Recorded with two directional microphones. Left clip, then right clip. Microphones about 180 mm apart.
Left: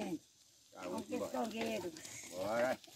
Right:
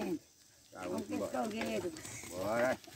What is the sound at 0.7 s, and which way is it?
Sizzle, 60° left (ahead or behind).